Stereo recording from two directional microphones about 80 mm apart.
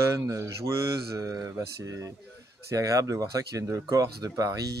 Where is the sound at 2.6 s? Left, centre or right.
Right.